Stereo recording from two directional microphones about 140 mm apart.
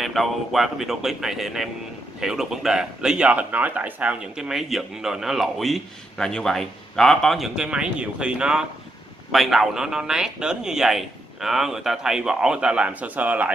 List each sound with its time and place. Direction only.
0.0 s speech: centre (ahead or behind)